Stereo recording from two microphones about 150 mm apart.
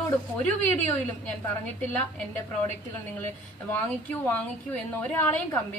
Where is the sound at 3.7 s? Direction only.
10° left (ahead or behind).